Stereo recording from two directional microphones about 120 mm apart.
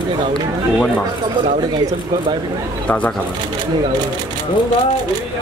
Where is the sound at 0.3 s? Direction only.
10° left (ahead or behind).